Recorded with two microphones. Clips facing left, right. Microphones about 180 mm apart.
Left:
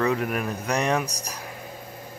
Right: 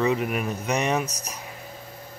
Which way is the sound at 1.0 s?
30° left (ahead or behind).